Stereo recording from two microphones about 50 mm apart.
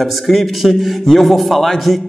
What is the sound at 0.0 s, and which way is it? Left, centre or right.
A man's voice, centre.